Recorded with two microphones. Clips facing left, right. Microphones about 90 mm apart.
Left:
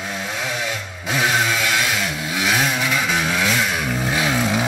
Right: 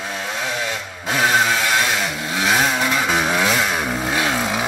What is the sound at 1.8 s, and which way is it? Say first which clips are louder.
Vehicle: right 2 dB; 20° right (ahead or behind).